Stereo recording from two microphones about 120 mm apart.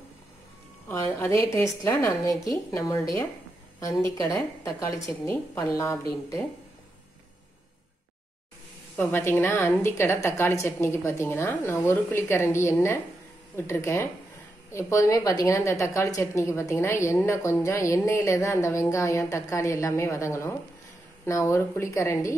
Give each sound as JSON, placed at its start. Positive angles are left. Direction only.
{"t": 0.8, "sound": "a woman's voice", "side_deg": 20}
{"t": 8.9, "sound": "a woman's voice", "side_deg": 15}